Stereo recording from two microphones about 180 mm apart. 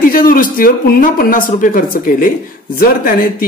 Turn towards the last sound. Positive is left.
turn(degrees=50)  # may be behind; listen again after turning